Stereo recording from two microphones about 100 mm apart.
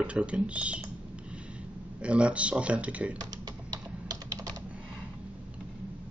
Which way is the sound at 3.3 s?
40° right (ahead or behind).